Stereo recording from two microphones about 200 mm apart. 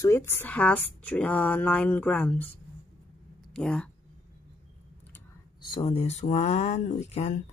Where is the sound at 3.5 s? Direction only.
5° left (ahead or behind).